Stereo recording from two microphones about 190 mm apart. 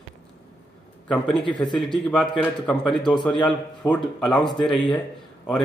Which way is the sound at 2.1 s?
5° left (ahead or behind).